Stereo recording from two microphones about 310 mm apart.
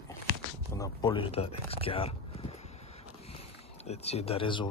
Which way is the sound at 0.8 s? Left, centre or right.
Centre.